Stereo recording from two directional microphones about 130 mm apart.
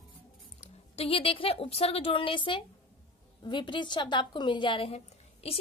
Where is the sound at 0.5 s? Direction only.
50° left (ahead or behind).